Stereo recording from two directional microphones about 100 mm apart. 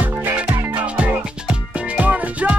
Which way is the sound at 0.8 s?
15° right (ahead or behind).